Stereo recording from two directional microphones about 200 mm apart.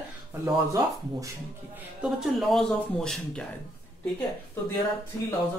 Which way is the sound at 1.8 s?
5° right (ahead or behind).